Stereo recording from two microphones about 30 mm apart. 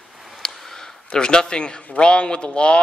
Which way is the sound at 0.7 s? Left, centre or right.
Centre.